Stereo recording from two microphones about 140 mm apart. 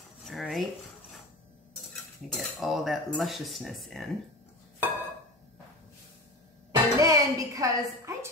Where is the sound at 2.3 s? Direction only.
Centre (ahead or behind).